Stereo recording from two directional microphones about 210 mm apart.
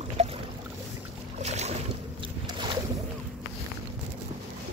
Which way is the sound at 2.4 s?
20° right (ahead or behind).